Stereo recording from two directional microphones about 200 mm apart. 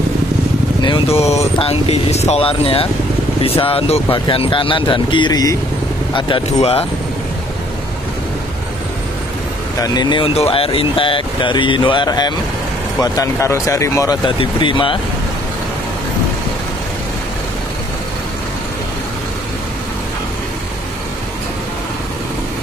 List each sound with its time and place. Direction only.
0.8 s speech: 25° left (ahead or behind)
9.9 s speech: 25° left (ahead or behind)